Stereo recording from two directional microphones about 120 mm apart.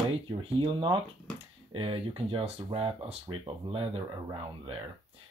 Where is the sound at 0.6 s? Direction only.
45° right (ahead or behind).